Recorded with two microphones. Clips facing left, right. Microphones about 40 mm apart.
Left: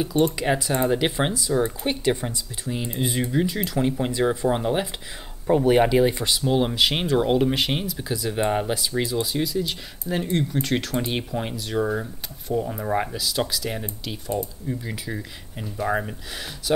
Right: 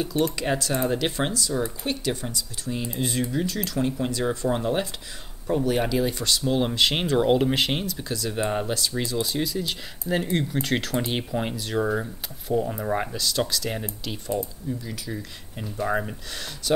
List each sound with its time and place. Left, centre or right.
0.0 s speech: centre; by 2.7 s left
2.7 s speech: centre
14.7 s speech: left
15.6 s speech: centre